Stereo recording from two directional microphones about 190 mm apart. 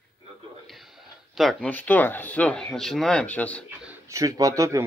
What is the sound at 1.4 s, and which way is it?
Speech, centre (ahead or behind).